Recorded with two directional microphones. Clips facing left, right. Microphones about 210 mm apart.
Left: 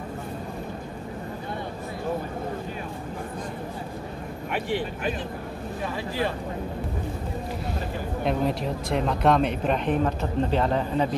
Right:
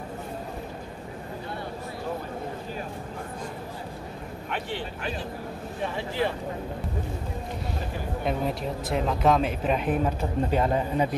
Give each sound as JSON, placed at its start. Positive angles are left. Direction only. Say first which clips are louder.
{"t": 4.5, "sound": "speech", "louder": "left 5 dB", "side_deg": 10}
{"t": 5.9, "sound": "speech", "louder": "even", "side_deg": -20}
{"t": 8.2, "sound": "speech", "louder": "left 3 dB", "side_deg": 0}